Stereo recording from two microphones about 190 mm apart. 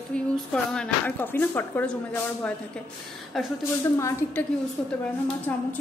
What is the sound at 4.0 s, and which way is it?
Speech, 10° left (ahead or behind).